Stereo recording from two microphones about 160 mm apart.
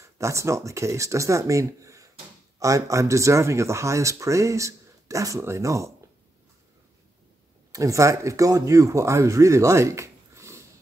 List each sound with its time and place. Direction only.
0.0 s speech: 20° right (ahead or behind)
7.7 s speech: 20° right (ahead or behind)